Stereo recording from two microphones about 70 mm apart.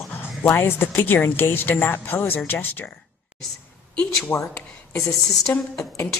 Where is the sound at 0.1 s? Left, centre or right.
Left.